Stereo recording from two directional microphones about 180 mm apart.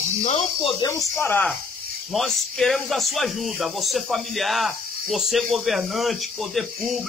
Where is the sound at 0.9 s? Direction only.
15° left (ahead or behind).